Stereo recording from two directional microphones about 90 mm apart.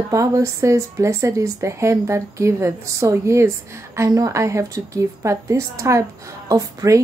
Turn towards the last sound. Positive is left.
turn(degrees=-40)  # may be behind; listen again after turning